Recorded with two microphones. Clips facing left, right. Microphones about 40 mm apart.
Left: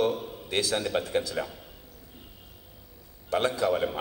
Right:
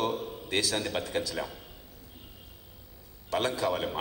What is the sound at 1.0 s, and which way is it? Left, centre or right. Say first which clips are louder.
Speech: left 3 dB; left.